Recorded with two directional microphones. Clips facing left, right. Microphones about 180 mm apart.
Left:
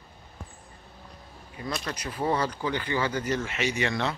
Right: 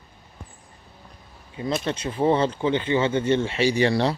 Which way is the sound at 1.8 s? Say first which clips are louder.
Right 7 dB; 25° right (ahead or behind).